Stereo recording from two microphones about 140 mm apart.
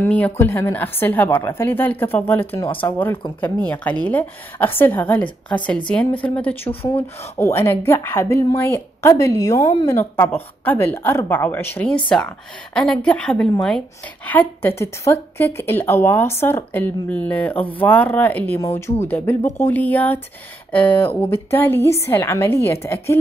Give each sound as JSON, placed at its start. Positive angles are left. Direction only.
{"t": 0.0, "sound": "a woman's voice", "side_deg": 10}
{"t": 6.8, "sound": "speech", "side_deg": 45}
{"t": 7.3, "sound": "a woman's voice", "side_deg": 15}